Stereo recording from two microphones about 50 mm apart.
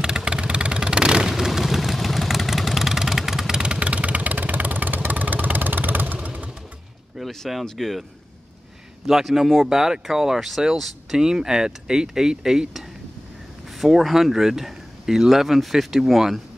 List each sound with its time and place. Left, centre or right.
0.0 s vehicle: centre
7.2 s a sound: centre
7.6 s speech: centre
9.0 s speech: centre